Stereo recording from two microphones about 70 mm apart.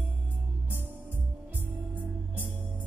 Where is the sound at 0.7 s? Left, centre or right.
Right.